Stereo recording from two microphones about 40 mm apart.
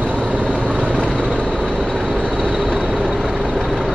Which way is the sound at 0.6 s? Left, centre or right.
Right.